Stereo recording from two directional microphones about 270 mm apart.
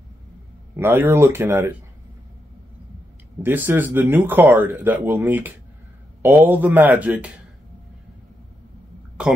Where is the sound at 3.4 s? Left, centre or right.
Centre.